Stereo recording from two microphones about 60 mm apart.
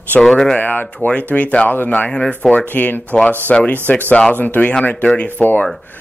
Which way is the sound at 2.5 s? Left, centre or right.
Left.